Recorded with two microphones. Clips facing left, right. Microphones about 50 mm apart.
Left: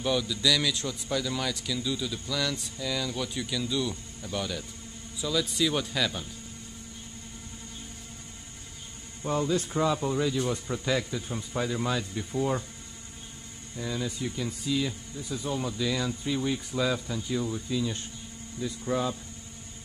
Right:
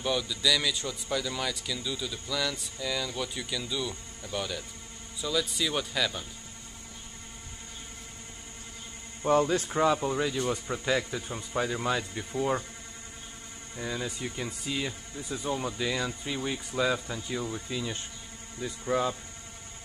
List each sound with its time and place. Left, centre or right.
0.0 s a man's voice: centre
9.3 s speech: right; by 12.6 s centre
13.7 s speech: right